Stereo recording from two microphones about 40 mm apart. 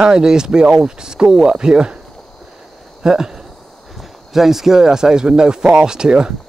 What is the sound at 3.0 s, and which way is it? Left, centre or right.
Speech, centre.